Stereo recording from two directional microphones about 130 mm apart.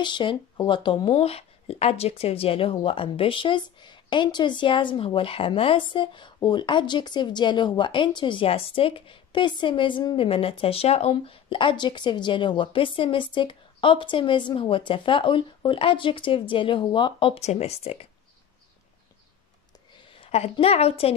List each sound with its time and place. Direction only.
0.0 s speech: 35° left (ahead or behind)
17.4 s speech: 55° left (ahead or behind)
20.2 s a sound: 55° left (ahead or behind)
20.5 s speech: 50° left (ahead or behind)